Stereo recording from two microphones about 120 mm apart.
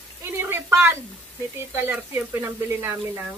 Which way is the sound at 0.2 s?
20° right (ahead or behind).